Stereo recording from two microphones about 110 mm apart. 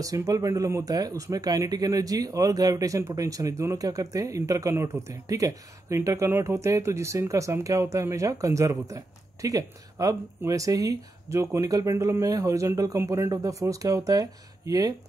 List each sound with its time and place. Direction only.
0.0 s speech: 30° right (ahead or behind)